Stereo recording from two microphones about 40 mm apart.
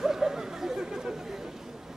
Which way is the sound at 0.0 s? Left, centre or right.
Centre.